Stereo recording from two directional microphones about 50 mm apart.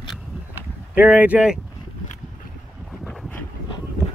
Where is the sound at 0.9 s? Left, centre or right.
Right.